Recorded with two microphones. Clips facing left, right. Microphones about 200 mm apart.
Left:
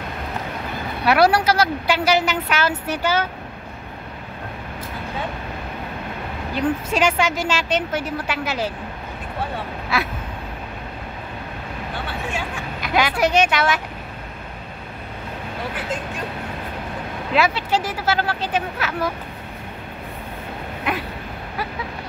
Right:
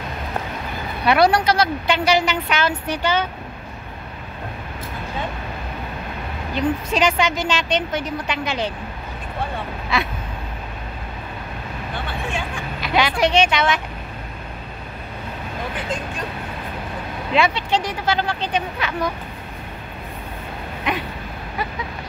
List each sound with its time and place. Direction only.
1.0 s a woman's voice: 5° left (ahead or behind)
6.5 s a woman's voice: 5° left (ahead or behind)
9.9 s a woman's voice: 5° left (ahead or behind)
12.9 s a woman's voice: 5° left (ahead or behind)
17.3 s a woman's voice: 5° left (ahead or behind)